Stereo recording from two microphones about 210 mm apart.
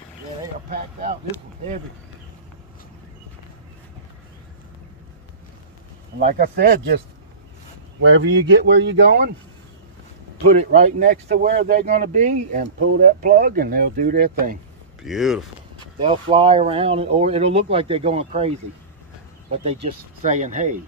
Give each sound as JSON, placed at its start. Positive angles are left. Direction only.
{"t": 6.1, "sound": "speech", "side_deg": -45}
{"t": 8.0, "sound": "speech", "side_deg": -60}
{"t": 10.7, "sound": "speech", "side_deg": -35}
{"t": 11.9, "sound": "speech", "side_deg": -35}
{"t": 12.7, "sound": "speech", "side_deg": -50}
{"t": 15.0, "sound": "speech", "side_deg": 0}
{"t": 16.0, "sound": "speech", "side_deg": -25}
{"t": 19.5, "sound": "speech", "side_deg": -30}